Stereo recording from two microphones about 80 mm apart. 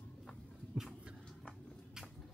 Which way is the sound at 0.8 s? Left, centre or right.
Centre.